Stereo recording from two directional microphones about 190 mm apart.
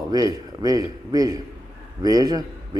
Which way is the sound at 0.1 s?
20° right (ahead or behind).